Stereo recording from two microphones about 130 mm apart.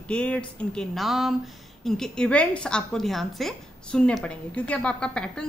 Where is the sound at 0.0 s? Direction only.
10° left (ahead or behind).